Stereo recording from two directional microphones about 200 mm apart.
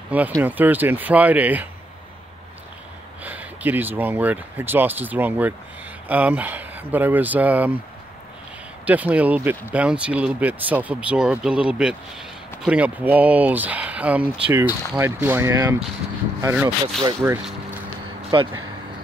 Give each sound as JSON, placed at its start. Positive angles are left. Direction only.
{"t": 0.4, "sound": "speech", "side_deg": -10}
{"t": 3.3, "sound": "speech", "side_deg": -10}
{"t": 8.8, "sound": "speech", "side_deg": -10}
{"t": 18.3, "sound": "speech", "side_deg": -25}